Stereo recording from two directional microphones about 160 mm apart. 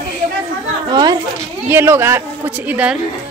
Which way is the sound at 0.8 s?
25° right (ahead or behind).